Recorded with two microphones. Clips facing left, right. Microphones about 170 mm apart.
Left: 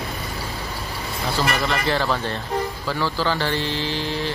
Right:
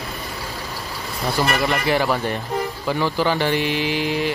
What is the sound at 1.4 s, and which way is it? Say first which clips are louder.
Speech: right 2 dB; 15° right (ahead or behind).